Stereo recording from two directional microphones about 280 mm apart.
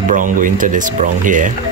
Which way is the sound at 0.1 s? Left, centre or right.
Right.